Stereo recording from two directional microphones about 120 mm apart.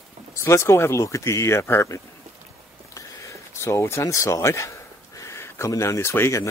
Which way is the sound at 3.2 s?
25° left (ahead or behind).